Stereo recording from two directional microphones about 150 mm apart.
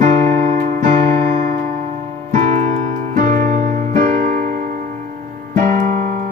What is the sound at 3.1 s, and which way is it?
Music, 60° right (ahead or behind).